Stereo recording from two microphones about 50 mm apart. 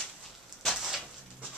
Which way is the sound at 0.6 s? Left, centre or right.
Centre.